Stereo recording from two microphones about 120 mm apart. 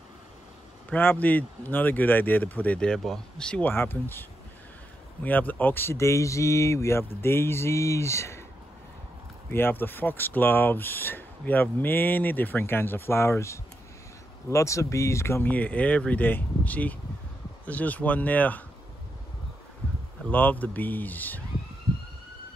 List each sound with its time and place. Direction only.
0.8 s speech: 15° left (ahead or behind)
9.5 s speech: 20° left (ahead or behind)
20.2 s speech: 15° left (ahead or behind)